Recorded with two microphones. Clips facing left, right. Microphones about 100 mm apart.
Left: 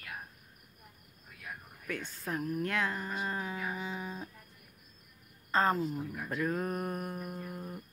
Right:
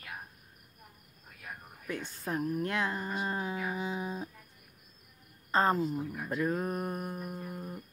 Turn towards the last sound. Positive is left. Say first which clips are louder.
# right 1 dB
turn(degrees=-10)  # may be behind; listen again after turning